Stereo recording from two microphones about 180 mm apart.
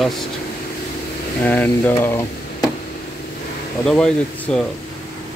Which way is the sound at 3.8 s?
5° left (ahead or behind).